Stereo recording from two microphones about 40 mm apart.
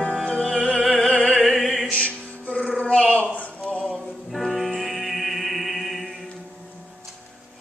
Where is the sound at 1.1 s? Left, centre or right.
Left.